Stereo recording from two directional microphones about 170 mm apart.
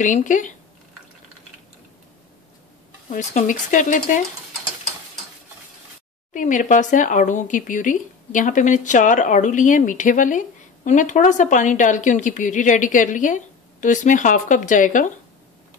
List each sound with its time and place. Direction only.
0.0 s speech: 45° left (ahead or behind)
3.1 s speech: 50° left (ahead or behind)
6.3 s speech: 50° left (ahead or behind)